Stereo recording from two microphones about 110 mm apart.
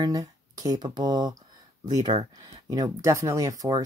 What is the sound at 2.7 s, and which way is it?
Speech, 35° right (ahead or behind).